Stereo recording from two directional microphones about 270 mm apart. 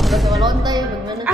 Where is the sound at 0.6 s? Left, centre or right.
Centre.